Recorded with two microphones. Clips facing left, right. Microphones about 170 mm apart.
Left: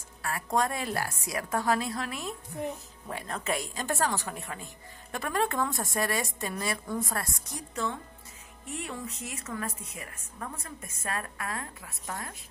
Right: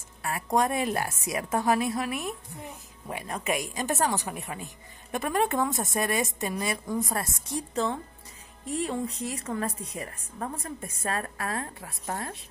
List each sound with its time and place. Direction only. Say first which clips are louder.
0.2 s a woman's voice: right 3 dB; 20° right (ahead or behind)